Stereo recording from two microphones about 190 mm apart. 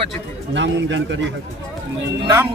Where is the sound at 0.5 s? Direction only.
70° right (ahead or behind).